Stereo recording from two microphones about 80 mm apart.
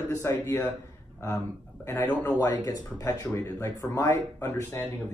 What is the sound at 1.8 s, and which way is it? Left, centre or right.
Speech, left.